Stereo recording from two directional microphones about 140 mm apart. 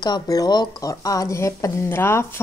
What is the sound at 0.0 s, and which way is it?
Speech, 30° left (ahead or behind).